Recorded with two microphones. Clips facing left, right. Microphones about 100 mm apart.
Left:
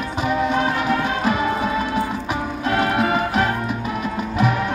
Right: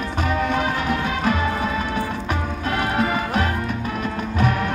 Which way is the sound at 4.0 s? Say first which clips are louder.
Left 2 dB; 10° left (ahead or behind).